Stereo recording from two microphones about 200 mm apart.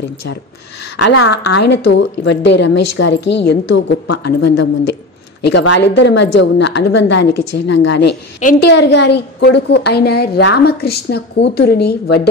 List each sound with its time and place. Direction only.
1.0 s a woman's voice: 75° left (ahead or behind); by 4.4 s 55° left (ahead or behind)
5.5 s a woman's voice: 65° left (ahead or behind)